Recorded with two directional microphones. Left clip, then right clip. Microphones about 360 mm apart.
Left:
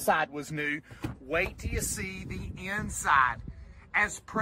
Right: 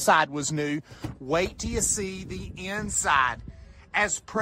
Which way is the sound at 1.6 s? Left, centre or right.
Centre.